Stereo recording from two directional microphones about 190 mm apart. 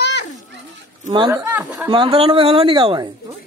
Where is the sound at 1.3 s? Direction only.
15° right (ahead or behind).